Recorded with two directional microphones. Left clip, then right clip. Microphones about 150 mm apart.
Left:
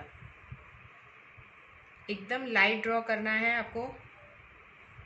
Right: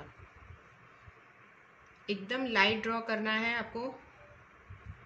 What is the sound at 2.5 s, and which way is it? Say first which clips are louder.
A woman's voice: left 3 dB; 75° right (ahead or behind).